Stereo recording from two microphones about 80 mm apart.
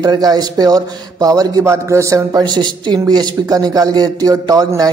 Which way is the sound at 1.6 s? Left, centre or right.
Right.